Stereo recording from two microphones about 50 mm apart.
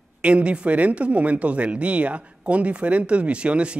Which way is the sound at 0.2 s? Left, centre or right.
Right.